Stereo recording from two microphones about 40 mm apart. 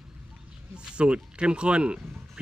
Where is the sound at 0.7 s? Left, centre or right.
Right.